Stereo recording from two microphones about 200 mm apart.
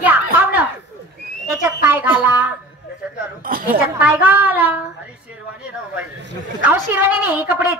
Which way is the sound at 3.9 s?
10° right (ahead or behind).